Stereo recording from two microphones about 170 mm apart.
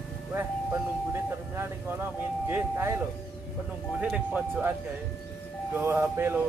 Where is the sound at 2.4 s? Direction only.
15° right (ahead or behind).